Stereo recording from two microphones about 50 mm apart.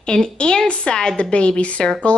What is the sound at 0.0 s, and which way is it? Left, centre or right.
Speech, centre.